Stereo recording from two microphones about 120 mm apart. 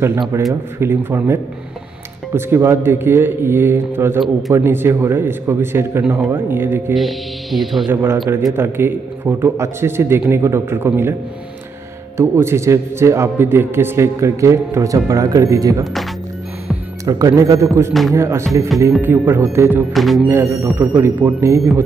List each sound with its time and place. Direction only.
0.3 s a man's voice: 20° right (ahead or behind)
7.0 s speech: centre (ahead or behind)
7.9 s a man's voice: 20° right (ahead or behind)
12.2 s a man's voice: 25° right (ahead or behind)
15.8 s speech: centre (ahead or behind)
17.0 s a man's voice: 30° right (ahead or behind)
19.9 s speech: centre (ahead or behind)
20.2 s speech: 15° right (ahead or behind)
20.4 s a man's voice: 25° right (ahead or behind)